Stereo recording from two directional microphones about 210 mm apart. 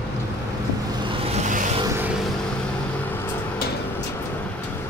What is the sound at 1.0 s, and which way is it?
Vehicle, 30° right (ahead or behind).